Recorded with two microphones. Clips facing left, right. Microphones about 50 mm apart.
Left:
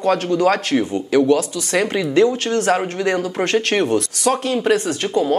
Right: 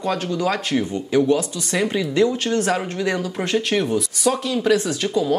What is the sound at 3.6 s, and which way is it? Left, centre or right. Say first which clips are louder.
Speech: left 3 dB; left.